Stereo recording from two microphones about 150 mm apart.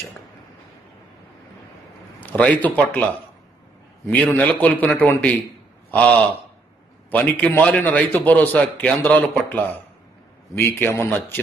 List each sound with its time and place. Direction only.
2.2 s a man's voice: 10° left (ahead or behind)